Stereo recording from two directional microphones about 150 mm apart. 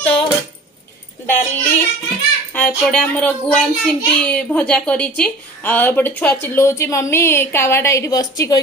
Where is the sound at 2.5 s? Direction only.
5° left (ahead or behind).